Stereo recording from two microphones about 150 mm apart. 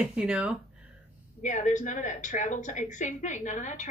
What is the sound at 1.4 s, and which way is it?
A woman's voice, 55° left (ahead or behind).